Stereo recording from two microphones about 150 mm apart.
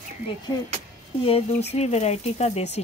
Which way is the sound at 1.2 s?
45° left (ahead or behind).